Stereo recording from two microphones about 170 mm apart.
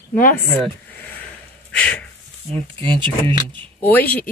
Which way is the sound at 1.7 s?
10° left (ahead or behind).